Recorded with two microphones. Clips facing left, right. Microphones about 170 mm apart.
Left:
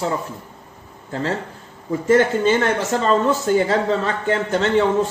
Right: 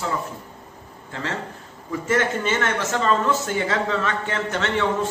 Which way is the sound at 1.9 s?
30° left (ahead or behind).